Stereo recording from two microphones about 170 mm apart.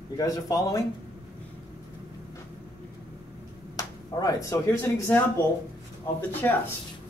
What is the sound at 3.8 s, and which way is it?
Speech, 20° left (ahead or behind).